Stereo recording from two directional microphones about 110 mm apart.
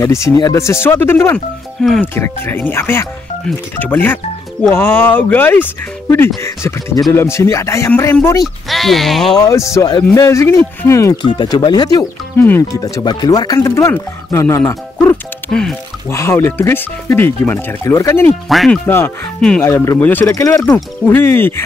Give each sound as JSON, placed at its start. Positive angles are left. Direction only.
{"t": 0.0, "sound": "speech", "side_deg": 30}
{"t": 1.8, "sound": "speech", "side_deg": 5}
{"t": 2.1, "sound": "speech", "side_deg": 20}
{"t": 8.6, "sound": "speech", "side_deg": 0}
{"t": 9.4, "sound": "speech", "side_deg": 30}
{"t": 11.2, "sound": "speech", "side_deg": 45}
{"t": 18.5, "sound": "speech", "side_deg": 0}
{"t": 18.9, "sound": "speech", "side_deg": 20}